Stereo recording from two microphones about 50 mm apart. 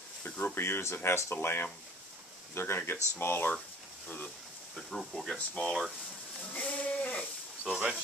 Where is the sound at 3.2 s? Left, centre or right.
Left.